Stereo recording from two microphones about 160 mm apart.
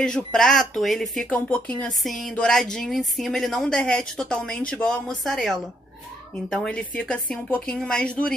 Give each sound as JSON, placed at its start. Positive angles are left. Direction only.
{"t": 0.0, "sound": "a woman's voice", "side_deg": 5}